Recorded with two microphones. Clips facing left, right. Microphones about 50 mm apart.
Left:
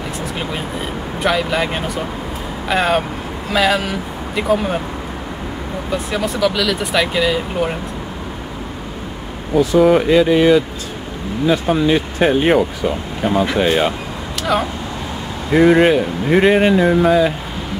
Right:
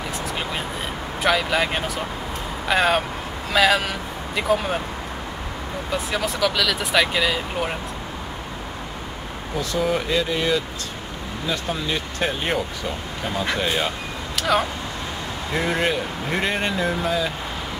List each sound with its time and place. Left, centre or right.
0.2 s speech: centre
5.9 s speech: centre
9.6 s speech: centre
11.6 s speech: centre
14.3 s vehicle: centre
15.5 s speech: centre